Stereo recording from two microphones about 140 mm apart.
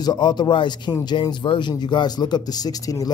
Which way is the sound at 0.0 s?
30° left (ahead or behind).